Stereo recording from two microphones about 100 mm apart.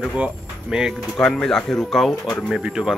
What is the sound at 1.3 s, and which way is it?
Speech, 5° left (ahead or behind).